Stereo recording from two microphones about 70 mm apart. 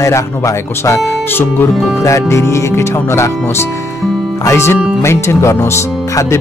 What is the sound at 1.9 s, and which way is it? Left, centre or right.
Speech, left.